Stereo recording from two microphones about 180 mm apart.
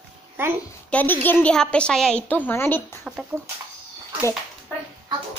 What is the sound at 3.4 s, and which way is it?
Speech, 15° right (ahead or behind).